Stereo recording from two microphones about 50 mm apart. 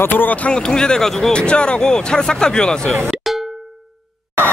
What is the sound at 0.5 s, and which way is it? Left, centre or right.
A man's voice, centre.